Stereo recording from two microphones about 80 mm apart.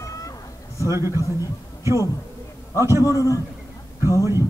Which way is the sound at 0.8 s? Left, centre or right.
Right.